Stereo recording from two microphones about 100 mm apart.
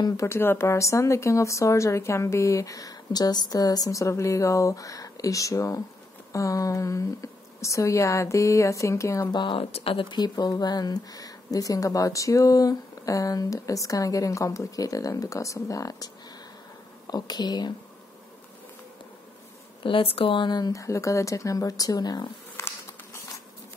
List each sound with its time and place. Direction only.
0.2 s speech: 25° left (ahead or behind)
9.3 s speech: 55° left (ahead or behind); by 16.1 s 35° left (ahead or behind)
17.1 s speech: 45° left (ahead or behind)
19.8 s speech: 60° left (ahead or behind); by 22.3 s 40° left (ahead or behind)
22.6 s insect: 30° left (ahead or behind)